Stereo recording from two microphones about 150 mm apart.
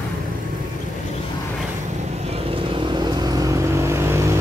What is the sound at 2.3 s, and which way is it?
Vehicle, 40° right (ahead or behind).